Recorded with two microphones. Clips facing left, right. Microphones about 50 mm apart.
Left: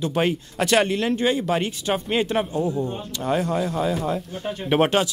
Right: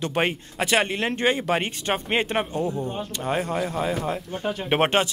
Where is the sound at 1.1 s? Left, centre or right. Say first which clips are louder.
Left 1 dB; right.